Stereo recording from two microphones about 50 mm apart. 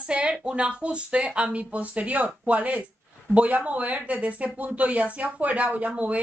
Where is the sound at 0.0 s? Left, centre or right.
Right.